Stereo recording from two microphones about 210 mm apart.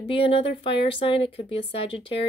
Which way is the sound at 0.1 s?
25° left (ahead or behind).